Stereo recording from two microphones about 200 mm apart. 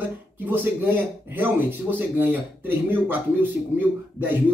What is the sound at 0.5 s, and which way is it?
Speech, 10° right (ahead or behind).